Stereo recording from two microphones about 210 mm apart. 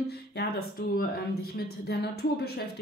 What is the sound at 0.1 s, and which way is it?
Speech, 50° left (ahead or behind).